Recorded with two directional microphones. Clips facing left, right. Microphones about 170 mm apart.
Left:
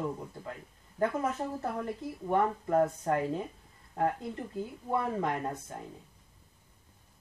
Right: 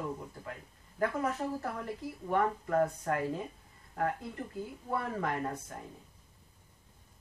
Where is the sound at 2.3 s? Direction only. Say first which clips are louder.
Left 2 dB; 25° left (ahead or behind).